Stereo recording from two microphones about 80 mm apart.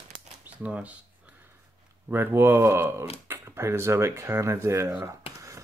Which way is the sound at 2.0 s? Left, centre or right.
Right.